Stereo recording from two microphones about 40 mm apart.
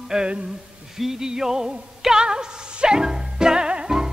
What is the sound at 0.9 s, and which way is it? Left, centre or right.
Music, centre.